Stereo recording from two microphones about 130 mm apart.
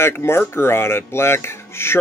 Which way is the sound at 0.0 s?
20° left (ahead or behind).